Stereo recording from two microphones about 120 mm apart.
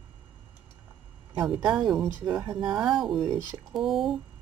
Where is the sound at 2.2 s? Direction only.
40° right (ahead or behind).